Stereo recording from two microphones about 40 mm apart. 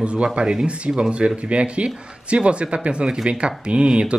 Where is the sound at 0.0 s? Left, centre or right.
Right.